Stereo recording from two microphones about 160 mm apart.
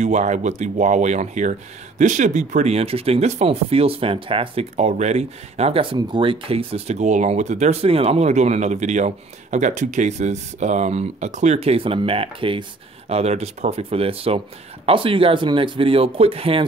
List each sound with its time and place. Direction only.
0.0 s speech: 45° right (ahead or behind)